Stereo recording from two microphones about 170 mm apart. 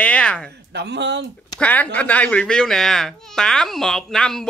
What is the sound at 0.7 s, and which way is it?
Speech, 90° right.